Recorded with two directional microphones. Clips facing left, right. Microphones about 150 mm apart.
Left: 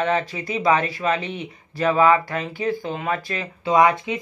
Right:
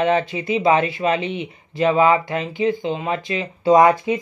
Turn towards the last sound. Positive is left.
turn(degrees=-35)  # may be behind; listen again after turning